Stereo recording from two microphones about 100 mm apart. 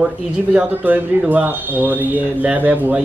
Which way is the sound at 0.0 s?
15° right (ahead or behind).